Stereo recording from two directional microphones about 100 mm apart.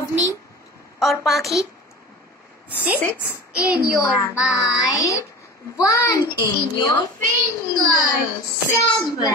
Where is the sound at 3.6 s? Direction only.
10° right (ahead or behind).